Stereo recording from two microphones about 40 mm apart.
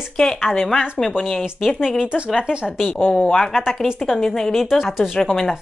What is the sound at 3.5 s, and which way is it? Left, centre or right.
Speech, centre.